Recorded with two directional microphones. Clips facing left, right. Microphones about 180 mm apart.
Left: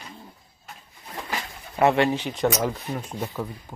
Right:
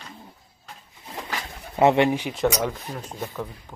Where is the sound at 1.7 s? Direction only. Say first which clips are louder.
Right 2 dB; 20° right (ahead or behind).